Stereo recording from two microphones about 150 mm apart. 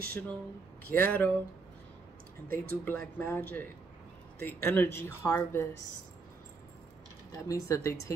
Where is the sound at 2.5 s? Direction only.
10° left (ahead or behind).